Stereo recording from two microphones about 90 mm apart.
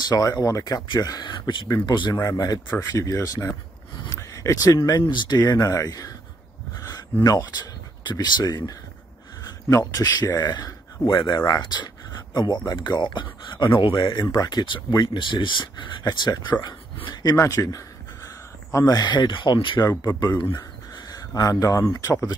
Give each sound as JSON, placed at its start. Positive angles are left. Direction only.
{"t": 0.0, "sound": "speech", "side_deg": 45}
{"t": 0.8, "sound": "speech", "side_deg": 50}
{"t": 5.0, "sound": "speech", "side_deg": 60}
{"t": 5.7, "sound": "speech", "side_deg": 40}
{"t": 7.2, "sound": "speech", "side_deg": 45}
{"t": 10.4, "sound": "speech", "side_deg": 55}
{"t": 14.3, "sound": "speech", "side_deg": 50}
{"t": 16.0, "sound": "speech", "side_deg": 45}
{"t": 17.4, "sound": "a man's voice", "side_deg": 40}
{"t": 19.8, "sound": "speech", "side_deg": 40}
{"t": 21.4, "sound": "speech", "side_deg": 40}